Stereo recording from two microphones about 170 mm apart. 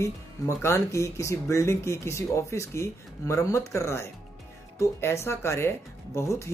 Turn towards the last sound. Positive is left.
turn(degrees=15)  # may be behind; listen again after turning